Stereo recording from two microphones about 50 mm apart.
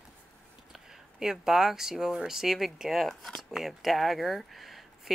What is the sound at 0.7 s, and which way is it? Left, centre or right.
Speech, centre.